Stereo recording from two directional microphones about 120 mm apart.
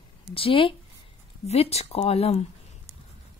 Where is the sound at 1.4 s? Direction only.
60° left (ahead or behind).